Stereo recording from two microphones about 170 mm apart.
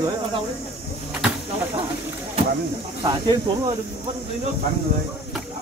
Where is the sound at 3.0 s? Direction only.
25° right (ahead or behind).